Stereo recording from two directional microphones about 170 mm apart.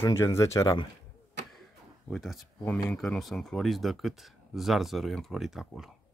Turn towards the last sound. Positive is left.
turn(degrees=0)  # may be behind; listen again after turning